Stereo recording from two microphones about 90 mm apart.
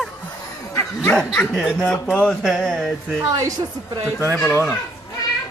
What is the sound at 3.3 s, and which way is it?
Speech, 45° right (ahead or behind).